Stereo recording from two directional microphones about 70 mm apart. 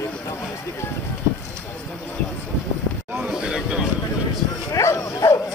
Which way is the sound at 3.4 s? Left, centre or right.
Centre.